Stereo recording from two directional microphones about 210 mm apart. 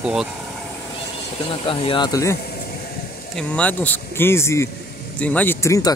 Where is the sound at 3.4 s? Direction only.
5° left (ahead or behind).